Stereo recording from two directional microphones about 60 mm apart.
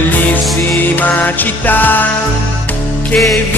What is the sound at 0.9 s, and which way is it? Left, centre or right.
Music, left.